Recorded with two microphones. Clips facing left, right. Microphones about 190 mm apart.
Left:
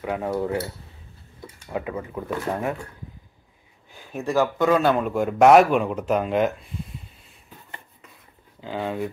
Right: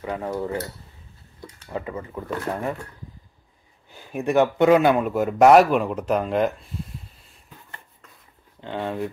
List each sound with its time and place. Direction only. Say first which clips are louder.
0.0 s speech: left 2 dB; 5° left (ahead or behind)
4.1 s a man's voice: right 3 dB; 20° right (ahead or behind)
4.9 s speech: right 1 dB; 5° right (ahead or behind)
8.5 s speech: even; 5° left (ahead or behind)